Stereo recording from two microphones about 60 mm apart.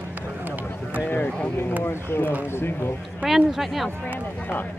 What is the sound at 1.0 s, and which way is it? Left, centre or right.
Speech, left.